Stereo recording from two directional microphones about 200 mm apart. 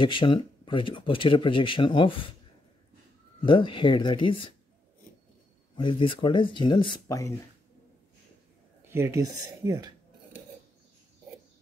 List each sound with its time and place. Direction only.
0.0 s speech: 25° left (ahead or behind)
3.4 s speech: 25° left (ahead or behind)
5.8 s speech: 25° left (ahead or behind)
8.8 s speech: 15° right (ahead or behind)